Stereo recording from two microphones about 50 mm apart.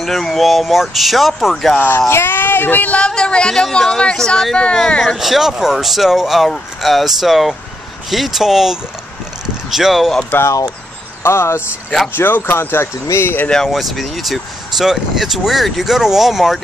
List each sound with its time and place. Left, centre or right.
0.0 s speech: centre
1.8 s speech: left
3.1 s speech: centre
5.0 s speech: centre
11.2 s speech: left
12.2 s speech: left
12.8 s speech: left
13.7 s speech: centre